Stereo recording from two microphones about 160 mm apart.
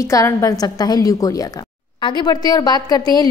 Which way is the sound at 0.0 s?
20° left (ahead or behind).